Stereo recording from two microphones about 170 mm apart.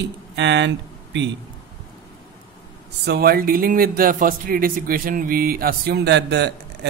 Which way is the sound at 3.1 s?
65° right (ahead or behind).